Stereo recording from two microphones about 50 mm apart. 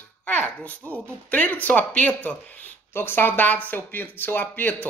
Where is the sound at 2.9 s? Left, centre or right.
Left.